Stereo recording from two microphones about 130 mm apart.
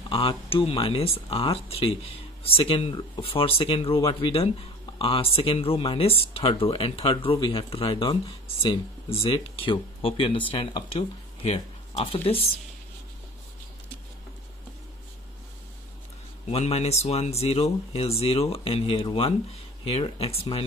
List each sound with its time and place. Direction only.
0.1 s speech: 45° left (ahead or behind)
16.4 s speech: 55° left (ahead or behind)